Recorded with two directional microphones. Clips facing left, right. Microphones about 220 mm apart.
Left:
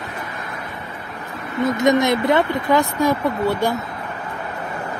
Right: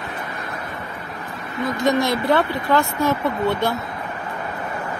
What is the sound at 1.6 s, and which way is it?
Speech, 20° left (ahead or behind).